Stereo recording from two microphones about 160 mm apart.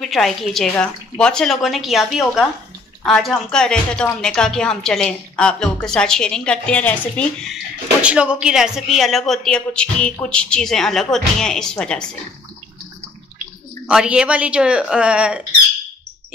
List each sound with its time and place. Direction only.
0.0 s a woman's voice: centre (ahead or behind)
8.0 s a woman's voice: 5° right (ahead or behind)
13.8 s speech: 5° right (ahead or behind)